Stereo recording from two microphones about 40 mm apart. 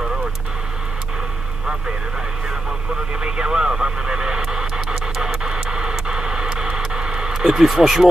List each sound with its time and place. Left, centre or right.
3.2 s radio: right
7.4 s speech: centre